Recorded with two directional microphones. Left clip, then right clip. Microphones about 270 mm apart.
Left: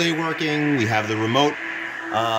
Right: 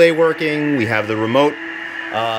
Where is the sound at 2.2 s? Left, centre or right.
Centre.